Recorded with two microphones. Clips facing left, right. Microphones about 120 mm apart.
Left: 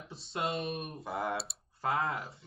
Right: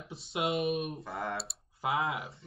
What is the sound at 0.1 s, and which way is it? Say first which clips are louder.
Speech: right 3 dB; 5° right (ahead or behind).